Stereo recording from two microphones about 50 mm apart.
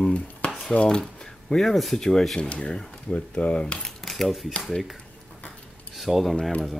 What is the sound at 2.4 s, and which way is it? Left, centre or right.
Speech, centre.